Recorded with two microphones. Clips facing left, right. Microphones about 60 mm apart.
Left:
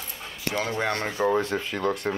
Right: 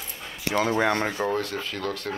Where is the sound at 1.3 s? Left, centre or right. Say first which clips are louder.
Left 3 dB; left.